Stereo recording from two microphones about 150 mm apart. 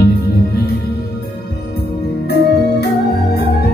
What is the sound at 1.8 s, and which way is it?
Music, 90° left.